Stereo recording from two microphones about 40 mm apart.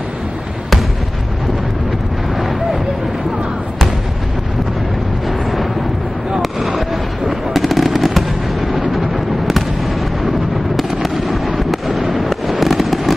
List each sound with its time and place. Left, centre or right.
7.2 s fireworks: centre
10.8 s fireworks: centre